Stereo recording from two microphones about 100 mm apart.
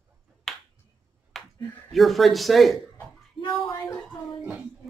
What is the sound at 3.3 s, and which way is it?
Speech, 55° left (ahead or behind).